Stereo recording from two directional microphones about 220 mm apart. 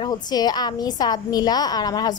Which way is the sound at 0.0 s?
20° left (ahead or behind).